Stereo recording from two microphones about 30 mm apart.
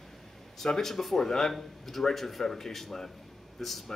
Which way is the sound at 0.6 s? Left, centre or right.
Centre.